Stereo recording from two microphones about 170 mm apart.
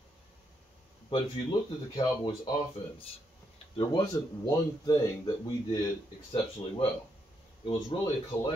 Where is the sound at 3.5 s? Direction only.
30° left (ahead or behind).